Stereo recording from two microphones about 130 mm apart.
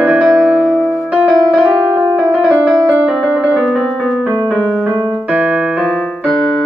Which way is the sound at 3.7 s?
5° left (ahead or behind).